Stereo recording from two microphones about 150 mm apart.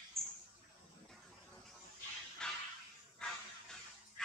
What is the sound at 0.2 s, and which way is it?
Mouse, centre (ahead or behind).